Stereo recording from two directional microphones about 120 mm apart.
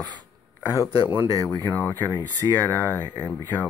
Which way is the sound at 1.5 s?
20° left (ahead or behind).